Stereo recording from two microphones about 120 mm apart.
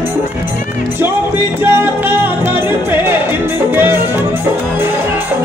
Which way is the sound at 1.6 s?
15° right (ahead or behind).